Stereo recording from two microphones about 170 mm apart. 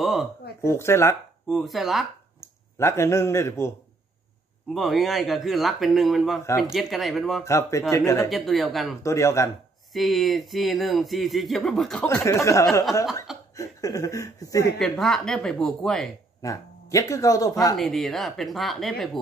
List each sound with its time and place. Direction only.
0.0 s a sound: centre (ahead or behind)
0.6 s speech: 15° left (ahead or behind)
1.5 s speech: centre (ahead or behind)
2.4 s speech: 15° left (ahead or behind)
4.7 s speech: centre (ahead or behind)
7.4 s speech: 15° left (ahead or behind)
8.3 s speech: centre (ahead or behind)
9.0 s speech: 15° left (ahead or behind)
9.9 s speech: centre (ahead or behind)
12.2 s speech: 15° left (ahead or behind)
13.6 s a sound: 20° left (ahead or behind)
14.8 s speech: 5° left (ahead or behind)
16.3 s a man's voice: 20° left (ahead or behind)
17.7 s speech: centre (ahead or behind)